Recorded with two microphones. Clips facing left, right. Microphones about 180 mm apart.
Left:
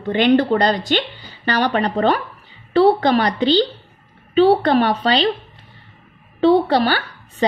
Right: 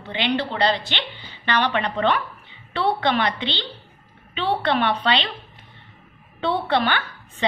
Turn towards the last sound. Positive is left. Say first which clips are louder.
# left 6 dB
turn(degrees=40)  # may be behind; listen again after turning